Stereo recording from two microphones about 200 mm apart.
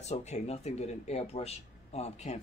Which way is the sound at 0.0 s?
35° left (ahead or behind).